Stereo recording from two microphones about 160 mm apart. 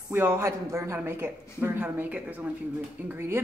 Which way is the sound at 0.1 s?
15° right (ahead or behind).